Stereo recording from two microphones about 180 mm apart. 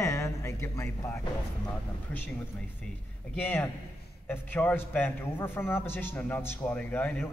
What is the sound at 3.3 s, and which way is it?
A man's voice, 10° left (ahead or behind).